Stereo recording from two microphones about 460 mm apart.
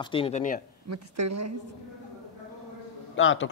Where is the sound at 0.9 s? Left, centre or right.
Right.